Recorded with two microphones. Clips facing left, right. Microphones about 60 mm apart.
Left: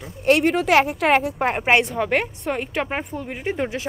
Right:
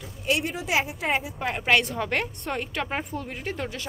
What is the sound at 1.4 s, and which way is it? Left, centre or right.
Speech, left.